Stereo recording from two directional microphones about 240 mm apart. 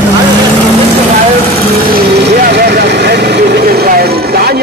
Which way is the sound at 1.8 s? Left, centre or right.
Right.